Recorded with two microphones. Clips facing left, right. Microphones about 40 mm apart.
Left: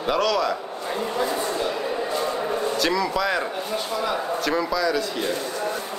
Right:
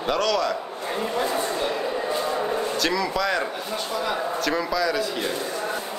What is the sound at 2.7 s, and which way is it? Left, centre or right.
Speech, centre.